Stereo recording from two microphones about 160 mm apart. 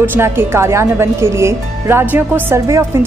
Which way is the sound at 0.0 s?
15° right (ahead or behind).